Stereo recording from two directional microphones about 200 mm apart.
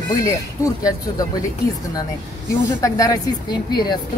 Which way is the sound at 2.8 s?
15° left (ahead or behind).